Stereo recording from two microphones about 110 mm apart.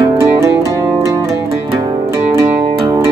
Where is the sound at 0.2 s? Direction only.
25° right (ahead or behind).